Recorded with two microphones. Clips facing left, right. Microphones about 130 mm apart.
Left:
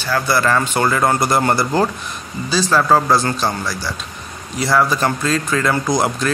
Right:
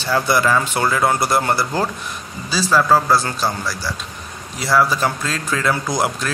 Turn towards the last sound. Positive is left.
turn(degrees=-5)  # may be behind; listen again after turning